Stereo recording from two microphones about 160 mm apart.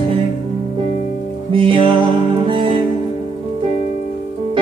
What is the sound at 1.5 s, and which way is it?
Music, 30° right (ahead or behind).